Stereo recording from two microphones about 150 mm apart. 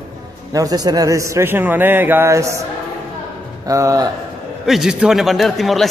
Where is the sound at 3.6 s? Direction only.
20° right (ahead or behind).